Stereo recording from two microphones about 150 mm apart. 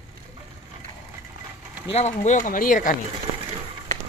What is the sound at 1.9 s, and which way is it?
Speech, 45° left (ahead or behind).